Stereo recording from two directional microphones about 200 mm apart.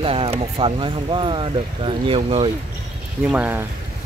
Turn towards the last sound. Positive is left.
turn(degrees=-10)  # may be behind; listen again after turning